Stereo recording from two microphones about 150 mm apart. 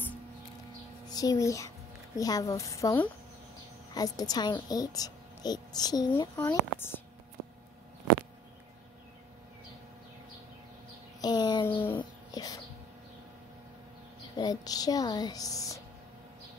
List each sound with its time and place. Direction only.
1.0 s a child's voice: 25° left (ahead or behind)
6.3 s speech: 15° left (ahead or behind)
11.1 s a sound: 30° left (ahead or behind)
12.0 s bird: 25° left (ahead or behind)
14.3 s speech: 25° left (ahead or behind)